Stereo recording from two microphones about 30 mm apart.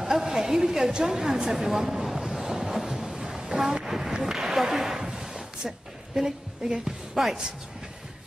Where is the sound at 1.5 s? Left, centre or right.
Centre.